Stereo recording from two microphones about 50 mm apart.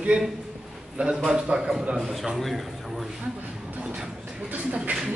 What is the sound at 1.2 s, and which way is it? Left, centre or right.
Speech, centre.